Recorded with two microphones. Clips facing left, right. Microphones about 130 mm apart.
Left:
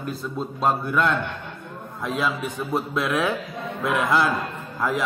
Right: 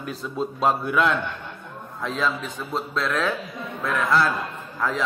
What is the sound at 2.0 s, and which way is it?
A man's voice, 10° left (ahead or behind).